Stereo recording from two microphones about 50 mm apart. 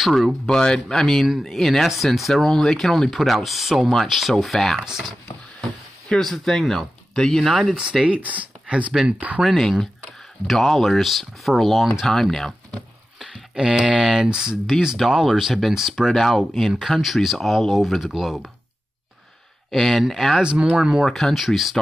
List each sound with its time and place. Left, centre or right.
0.0 s speech: centre
0.3 s speech: centre
1.2 s speech: centre
6.0 s speech: centre
7.7 s speech: centre
8.1 s speech: right
9.4 s speech: centre
12.1 s speech: centre
13.6 s speech: centre
14.0 s speech: centre
14.3 s speech: centre
19.7 s speech: centre
20.7 s speech: centre
21.0 s speech: centre